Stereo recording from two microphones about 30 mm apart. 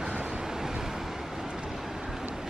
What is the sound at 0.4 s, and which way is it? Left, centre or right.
Waves, centre.